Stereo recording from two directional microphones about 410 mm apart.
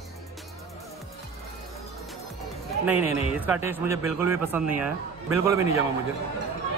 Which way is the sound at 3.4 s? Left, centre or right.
Centre.